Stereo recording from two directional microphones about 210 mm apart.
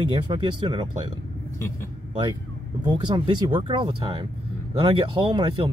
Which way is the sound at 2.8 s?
20° right (ahead or behind).